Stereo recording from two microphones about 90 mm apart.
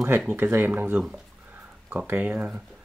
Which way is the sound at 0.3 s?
25° right (ahead or behind).